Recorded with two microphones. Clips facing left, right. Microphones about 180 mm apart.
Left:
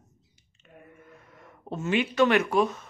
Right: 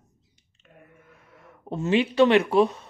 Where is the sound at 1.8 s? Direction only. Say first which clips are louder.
Right 4 dB; 30° right (ahead or behind).